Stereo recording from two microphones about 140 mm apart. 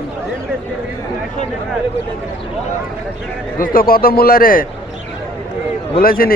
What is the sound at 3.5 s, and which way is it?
A man's voice, 85° left.